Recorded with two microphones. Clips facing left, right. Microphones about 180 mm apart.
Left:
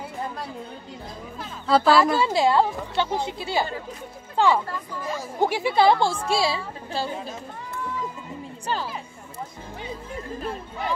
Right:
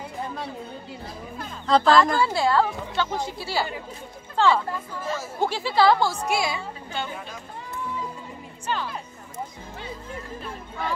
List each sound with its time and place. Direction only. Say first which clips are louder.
1.4 s speech: even; 5° left (ahead or behind)
2.2 s a woman's voice: left 2 dB; 15° left (ahead or behind)
8.7 s speech: even; 35° left (ahead or behind)